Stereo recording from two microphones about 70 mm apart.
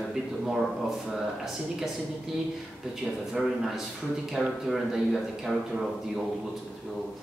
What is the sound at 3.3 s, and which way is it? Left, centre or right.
A man's voice, centre.